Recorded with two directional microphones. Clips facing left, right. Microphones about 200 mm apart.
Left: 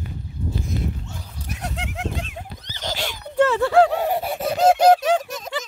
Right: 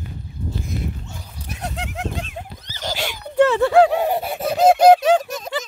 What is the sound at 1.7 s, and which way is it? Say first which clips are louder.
Horse: right 1 dB; 40° right (ahead or behind).